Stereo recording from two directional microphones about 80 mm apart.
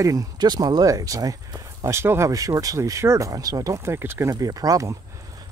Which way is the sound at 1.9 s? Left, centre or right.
Right.